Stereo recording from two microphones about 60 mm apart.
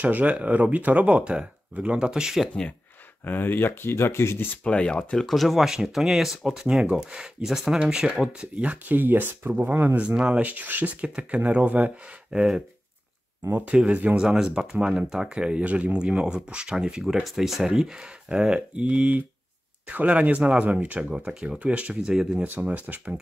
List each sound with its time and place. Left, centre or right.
0.0 s speech: right; by 2.5 s centre
3.3 s speech: left
4.6 s speech: centre
5.2 s speech: centre; by 9.8 s right
10.1 s speech: centre
10.4 s speech: right
11.0 s speech: centre
13.7 s speech: centre
17.0 s speech: centre; by 22.1 s right
22.1 s speech: centre
22.6 s speech: right